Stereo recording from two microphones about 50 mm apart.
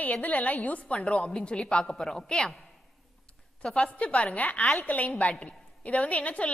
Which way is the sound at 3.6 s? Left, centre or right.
Left.